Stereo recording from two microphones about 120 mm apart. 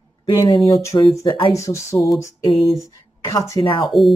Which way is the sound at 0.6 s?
30° left (ahead or behind).